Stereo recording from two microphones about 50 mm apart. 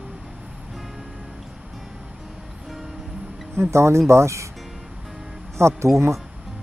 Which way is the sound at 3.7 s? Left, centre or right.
Right.